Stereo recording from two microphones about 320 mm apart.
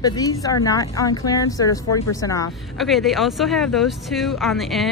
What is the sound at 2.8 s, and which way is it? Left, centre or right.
Speech, centre.